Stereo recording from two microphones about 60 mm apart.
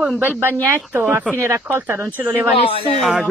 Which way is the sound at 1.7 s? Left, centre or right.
Right.